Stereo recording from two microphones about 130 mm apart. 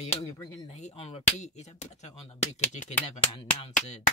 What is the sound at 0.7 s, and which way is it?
Speech, 55° left (ahead or behind).